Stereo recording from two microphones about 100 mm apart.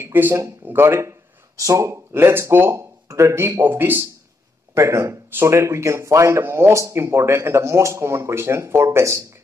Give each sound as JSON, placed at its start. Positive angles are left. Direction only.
{"t": 0.0, "sound": "speech", "side_deg": -20}